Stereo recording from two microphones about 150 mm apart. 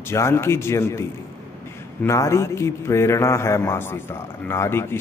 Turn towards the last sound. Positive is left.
turn(degrees=15)  # may be behind; listen again after turning